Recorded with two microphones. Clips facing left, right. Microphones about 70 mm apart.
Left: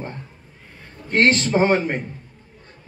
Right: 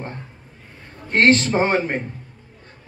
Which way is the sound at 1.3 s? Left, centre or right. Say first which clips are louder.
Even; right.